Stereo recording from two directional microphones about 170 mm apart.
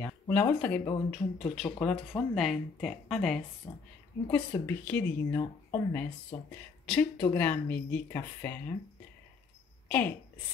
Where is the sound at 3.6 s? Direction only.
15° left (ahead or behind).